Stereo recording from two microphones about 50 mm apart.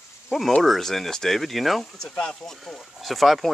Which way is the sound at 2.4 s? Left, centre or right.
Centre.